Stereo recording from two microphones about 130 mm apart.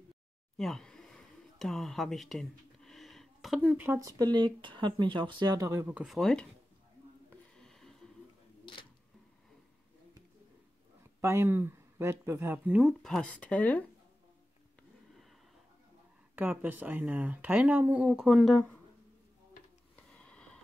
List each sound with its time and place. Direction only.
0.6 s a sound: 5° left (ahead or behind); by 4.0 s 15° right (ahead or behind)
4.2 s speech: 35° right (ahead or behind)
5.9 s speech: centre (ahead or behind)
7.2 s a sound: 5° left (ahead or behind)
11.1 s speech: 20° right (ahead or behind)
13.0 s speech: 5° left (ahead or behind)
16.3 s speech: 15° right (ahead or behind); by 18.8 s 5° left (ahead or behind)
20.1 s sniff: 10° left (ahead or behind)